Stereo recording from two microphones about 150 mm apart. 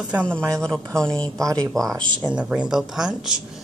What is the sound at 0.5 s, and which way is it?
Speech, 5° left (ahead or behind).